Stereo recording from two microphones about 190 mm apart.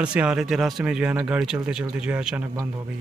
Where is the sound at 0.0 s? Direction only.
5° right (ahead or behind).